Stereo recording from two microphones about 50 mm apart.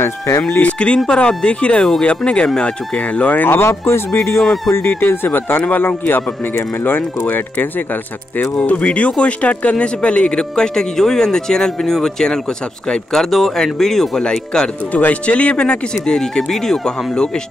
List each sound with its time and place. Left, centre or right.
0.4 s speech: left
3.4 s a man's voice: left
8.6 s speech: left
14.9 s speech: left; by 17.4 s centre